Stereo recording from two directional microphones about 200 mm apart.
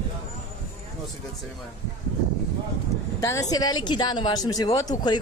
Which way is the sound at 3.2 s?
15° left (ahead or behind).